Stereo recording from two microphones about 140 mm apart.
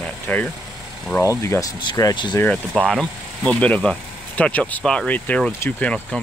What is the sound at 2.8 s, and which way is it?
Speech, 5° left (ahead or behind).